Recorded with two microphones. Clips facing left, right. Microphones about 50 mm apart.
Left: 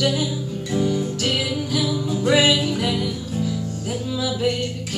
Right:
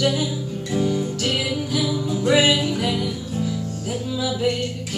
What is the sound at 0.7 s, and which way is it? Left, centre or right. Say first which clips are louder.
Music: even; centre.